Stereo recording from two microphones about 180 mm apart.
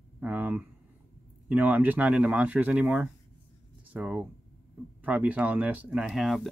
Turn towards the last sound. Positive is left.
turn(degrees=0)  # may be behind; listen again after turning